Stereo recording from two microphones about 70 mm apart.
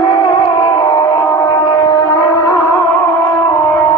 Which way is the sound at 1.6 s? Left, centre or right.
Left.